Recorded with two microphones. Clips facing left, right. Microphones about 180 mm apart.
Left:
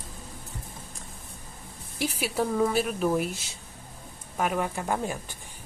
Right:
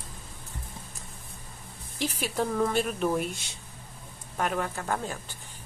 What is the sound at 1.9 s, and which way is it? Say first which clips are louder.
A woman's voice: left 1 dB; 10° left (ahead or behind).